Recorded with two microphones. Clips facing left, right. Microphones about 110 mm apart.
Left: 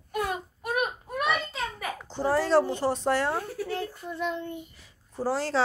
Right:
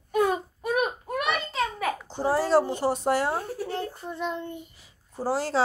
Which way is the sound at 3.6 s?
25° right (ahead or behind).